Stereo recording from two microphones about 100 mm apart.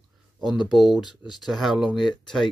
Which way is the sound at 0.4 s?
Centre (ahead or behind).